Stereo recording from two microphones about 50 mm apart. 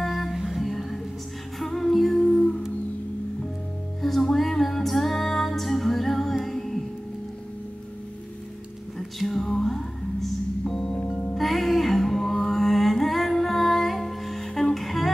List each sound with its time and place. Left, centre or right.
0.0 s music: centre
2.2 s music: centre
4.0 s female singing: centre
6.4 s music: centre
9.2 s music: centre